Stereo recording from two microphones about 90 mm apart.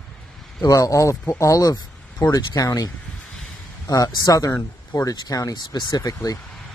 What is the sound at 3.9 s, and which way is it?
Speech, 45° left (ahead or behind).